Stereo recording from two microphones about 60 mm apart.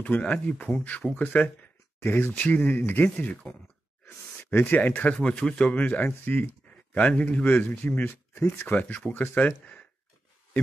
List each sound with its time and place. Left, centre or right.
0.0 s speech: left
2.0 s speech: left
2.3 s speech: left
5.1 s speech: centre
6.2 s a sound: left
7.0 s speech: left